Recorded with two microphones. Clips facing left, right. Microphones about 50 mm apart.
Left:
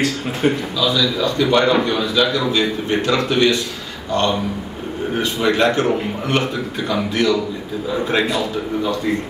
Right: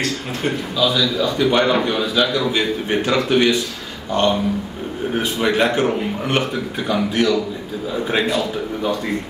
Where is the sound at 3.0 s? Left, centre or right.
Centre.